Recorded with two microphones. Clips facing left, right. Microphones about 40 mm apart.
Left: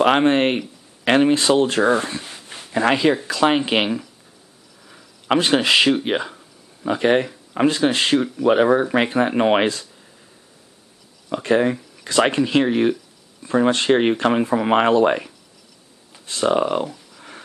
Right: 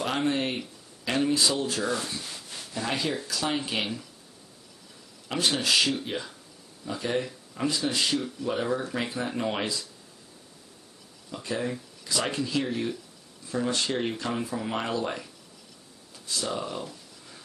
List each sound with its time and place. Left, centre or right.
0.0 s speech: left
2.2 s a sound: left
2.7 s speech: left
4.8 s a sound: left
5.4 s speech: left
11.2 s speech: left